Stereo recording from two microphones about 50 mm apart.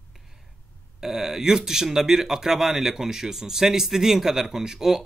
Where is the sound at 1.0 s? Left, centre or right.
Centre.